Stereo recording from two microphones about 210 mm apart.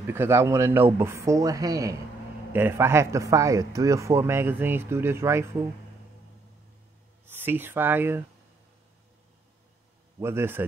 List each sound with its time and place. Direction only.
0.0 s speech: 10° right (ahead or behind)
7.2 s speech: 10° right (ahead or behind)
10.1 s speech: 10° right (ahead or behind)